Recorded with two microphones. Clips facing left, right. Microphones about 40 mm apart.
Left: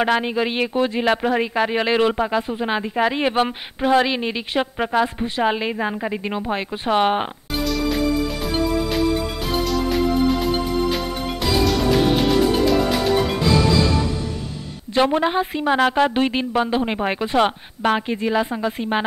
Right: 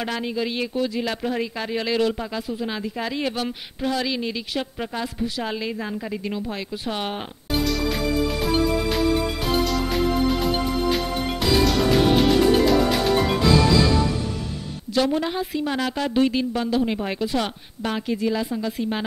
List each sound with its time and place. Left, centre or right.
0.0 s speech: left
7.9 s music: centre
15.0 s speech: left